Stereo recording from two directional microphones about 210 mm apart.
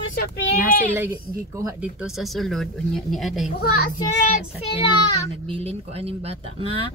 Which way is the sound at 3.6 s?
45° left (ahead or behind).